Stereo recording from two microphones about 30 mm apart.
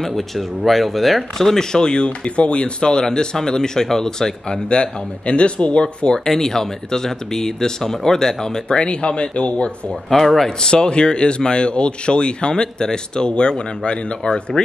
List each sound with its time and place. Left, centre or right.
0.1 s speech: centre
4.6 s speech: left
6.1 s speech: centre
8.7 s speech: left
10.0 s speech: centre
10.6 s speech: left
14.2 s speech: centre